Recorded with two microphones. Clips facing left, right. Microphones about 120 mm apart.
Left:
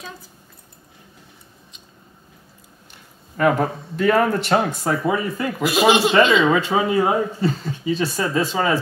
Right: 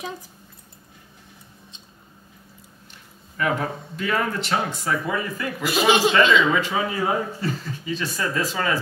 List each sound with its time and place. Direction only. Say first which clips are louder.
3.3 s speech: left 6 dB; 40° left (ahead or behind)
5.0 s speech: left 5 dB; 25° left (ahead or behind)
5.7 s a man's voice: left 2 dB; 5° left (ahead or behind)
6.2 s speech: left 2 dB; 45° left (ahead or behind)
6.5 s speech: left 5 dB; 30° left (ahead or behind)